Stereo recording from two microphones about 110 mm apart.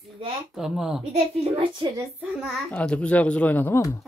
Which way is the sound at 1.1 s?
65° right (ahead or behind).